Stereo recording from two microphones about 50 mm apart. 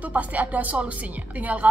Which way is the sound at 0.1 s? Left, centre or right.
Right.